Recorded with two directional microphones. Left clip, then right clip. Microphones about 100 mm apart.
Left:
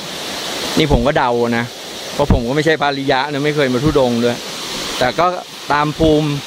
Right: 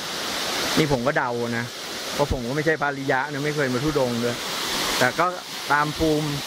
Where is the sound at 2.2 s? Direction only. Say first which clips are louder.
Left 9 dB; 20° left (ahead or behind).